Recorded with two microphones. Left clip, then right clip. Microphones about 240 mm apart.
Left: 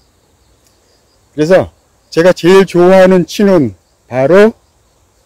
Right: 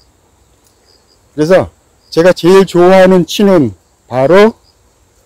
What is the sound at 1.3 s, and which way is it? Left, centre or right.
Speech, centre.